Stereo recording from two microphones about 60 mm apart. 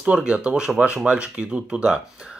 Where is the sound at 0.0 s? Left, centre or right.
Centre.